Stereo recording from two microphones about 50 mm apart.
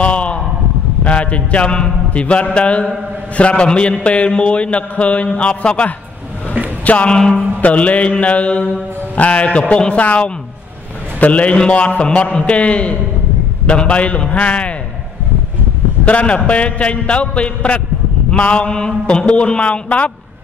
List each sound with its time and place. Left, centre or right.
0.0 s a sound: left
1.0 s a man's voice: left
7.1 s a man's voice: centre
7.6 s a man's voice: left
16.1 s a man's voice: left